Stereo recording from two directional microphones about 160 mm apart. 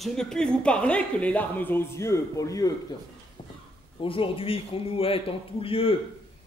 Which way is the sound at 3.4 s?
30° left (ahead or behind).